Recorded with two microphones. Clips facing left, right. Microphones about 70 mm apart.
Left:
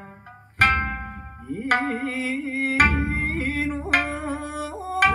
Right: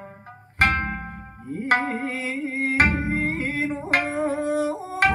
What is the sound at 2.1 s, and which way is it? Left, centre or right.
Music, right.